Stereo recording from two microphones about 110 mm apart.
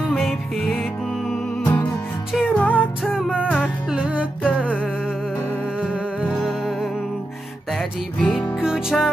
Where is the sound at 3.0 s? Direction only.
5° right (ahead or behind); by 8.6 s 15° left (ahead or behind).